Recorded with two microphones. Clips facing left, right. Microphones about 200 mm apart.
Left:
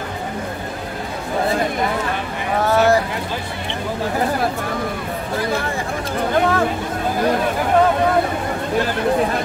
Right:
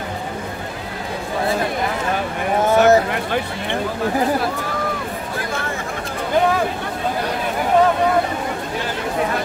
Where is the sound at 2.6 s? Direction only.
20° right (ahead or behind).